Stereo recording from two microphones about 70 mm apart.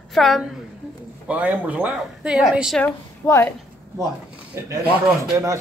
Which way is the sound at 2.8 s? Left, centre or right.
Left.